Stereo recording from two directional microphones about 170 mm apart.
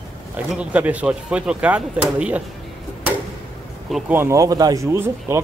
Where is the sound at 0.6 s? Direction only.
10° right (ahead or behind).